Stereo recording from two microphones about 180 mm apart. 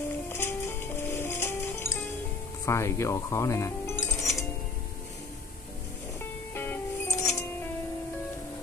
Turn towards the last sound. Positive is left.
turn(degrees=15)  # may be behind; listen again after turning